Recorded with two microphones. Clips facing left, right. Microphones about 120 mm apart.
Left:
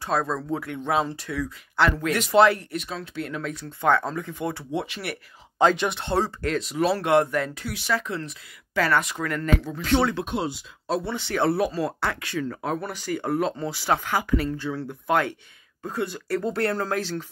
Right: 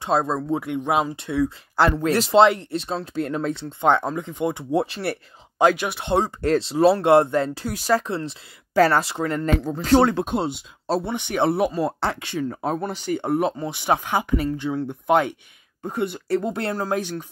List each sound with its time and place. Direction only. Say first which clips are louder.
0.0 s speech: right 4 dB; 25° right (ahead or behind); by 3.5 s 40° right (ahead or behind)
3.5 s speech: right 1 dB; 20° right (ahead or behind)
4.6 s speech: right 7 dB; 35° right (ahead or behind)
5.6 s speech: right 2 dB; 5° right (ahead or behind)
6.0 s speech: right 5 dB; 15° right (ahead or behind)
6.4 s speech: right 7 dB; 30° right (ahead or behind)
9.6 s speech: right 5 dB; 40° right (ahead or behind)
10.4 s speech: right 3 dB; 25° right (ahead or behind)